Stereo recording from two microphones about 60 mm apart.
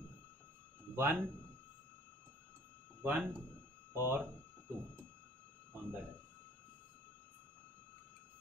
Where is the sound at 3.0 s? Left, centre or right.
Right.